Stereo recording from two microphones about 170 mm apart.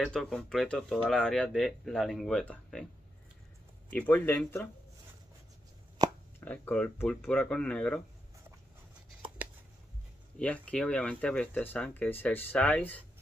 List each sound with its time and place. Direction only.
0.0 s speech: 5° left (ahead or behind)
3.9 s speech: 10° left (ahead or behind)
6.0 s chopping: 25° right (ahead or behind)
6.4 s speech: 10° left (ahead or behind)
10.4 s speech: 5° left (ahead or behind)